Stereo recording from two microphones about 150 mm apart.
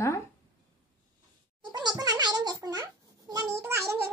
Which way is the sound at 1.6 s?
30° right (ahead or behind).